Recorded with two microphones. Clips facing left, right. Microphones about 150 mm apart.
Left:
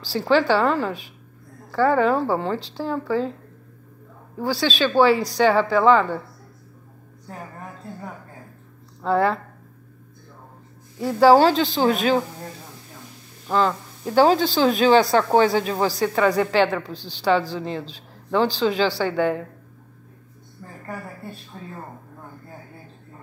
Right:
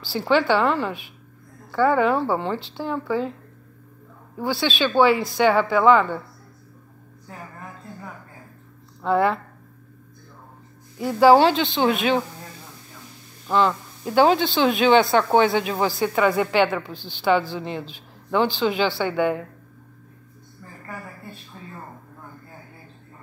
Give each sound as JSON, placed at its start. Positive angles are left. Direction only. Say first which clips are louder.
{"t": 0.3, "sound": "a woman's voice", "louder": "left 1 dB", "side_deg": 35}
{"t": 4.4, "sound": "a woman's voice", "louder": "left 1 dB", "side_deg": 35}
{"t": 9.0, "sound": "a woman's voice", "louder": "even", "side_deg": 35}
{"t": 11.1, "sound": "a woman's voice", "louder": "even", "side_deg": 35}
{"t": 13.5, "sound": "a woman's voice", "louder": "right 1 dB", "side_deg": 40}